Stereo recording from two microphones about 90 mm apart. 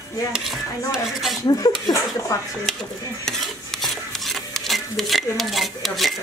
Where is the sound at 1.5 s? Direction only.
40° left (ahead or behind).